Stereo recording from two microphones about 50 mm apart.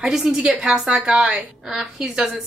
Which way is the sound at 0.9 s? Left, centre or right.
Right.